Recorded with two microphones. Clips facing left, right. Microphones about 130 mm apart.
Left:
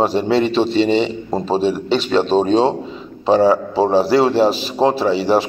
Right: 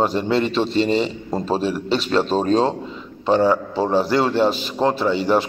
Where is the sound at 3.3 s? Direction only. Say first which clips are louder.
Left 4 dB; 35° left (ahead or behind).